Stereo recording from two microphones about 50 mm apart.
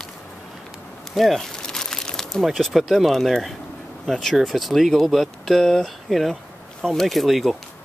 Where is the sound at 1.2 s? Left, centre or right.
Centre.